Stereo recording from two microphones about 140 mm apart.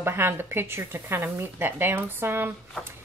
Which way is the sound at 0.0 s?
15° right (ahead or behind).